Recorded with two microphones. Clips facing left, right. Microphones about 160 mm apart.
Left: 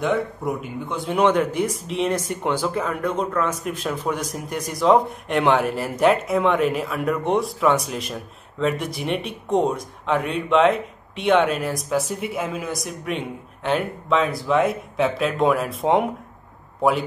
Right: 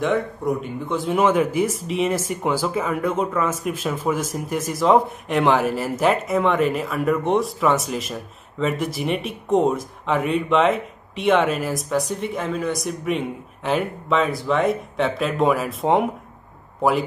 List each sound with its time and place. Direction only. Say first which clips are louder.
0.0 s speech: right 1 dB; centre (ahead or behind)